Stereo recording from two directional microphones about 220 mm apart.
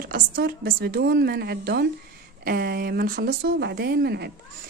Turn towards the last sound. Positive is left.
turn(degrees=-45)  # may be behind; listen again after turning